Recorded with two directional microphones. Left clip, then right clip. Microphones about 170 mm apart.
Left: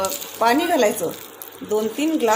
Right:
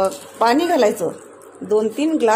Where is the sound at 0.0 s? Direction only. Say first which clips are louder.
Right 3 dB; 20° right (ahead or behind).